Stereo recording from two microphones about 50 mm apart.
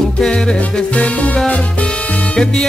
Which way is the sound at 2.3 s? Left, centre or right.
Centre.